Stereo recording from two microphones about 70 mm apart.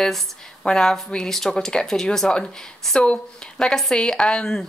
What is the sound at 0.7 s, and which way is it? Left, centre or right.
Speech, centre.